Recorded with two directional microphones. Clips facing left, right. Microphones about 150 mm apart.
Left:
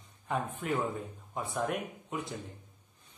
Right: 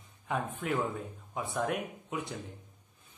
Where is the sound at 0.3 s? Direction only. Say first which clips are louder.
Even; centre (ahead or behind).